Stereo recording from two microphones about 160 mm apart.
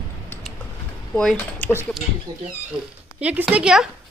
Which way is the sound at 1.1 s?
10° left (ahead or behind).